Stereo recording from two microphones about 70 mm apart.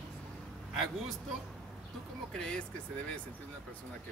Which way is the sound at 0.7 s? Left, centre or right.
Centre.